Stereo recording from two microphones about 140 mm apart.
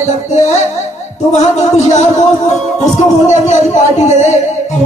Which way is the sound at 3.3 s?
55° left (ahead or behind).